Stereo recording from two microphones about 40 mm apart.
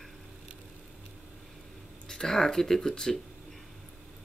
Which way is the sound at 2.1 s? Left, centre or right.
Centre.